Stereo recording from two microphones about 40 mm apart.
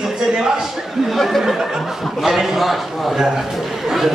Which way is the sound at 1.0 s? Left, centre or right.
Centre.